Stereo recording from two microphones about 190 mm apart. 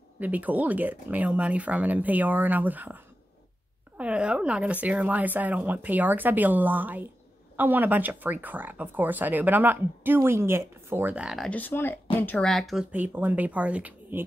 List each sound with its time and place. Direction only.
0.2 s speech: 10° right (ahead or behind)
4.0 s speech: 5° right (ahead or behind)